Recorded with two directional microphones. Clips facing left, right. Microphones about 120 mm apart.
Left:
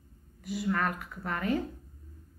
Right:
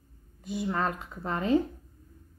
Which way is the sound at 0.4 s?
25° right (ahead or behind).